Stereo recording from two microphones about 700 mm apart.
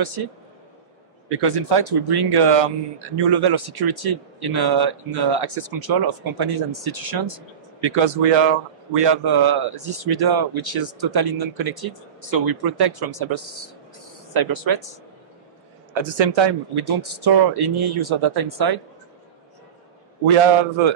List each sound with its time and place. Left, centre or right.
1.3 s a man's voice: right
20.3 s a man's voice: right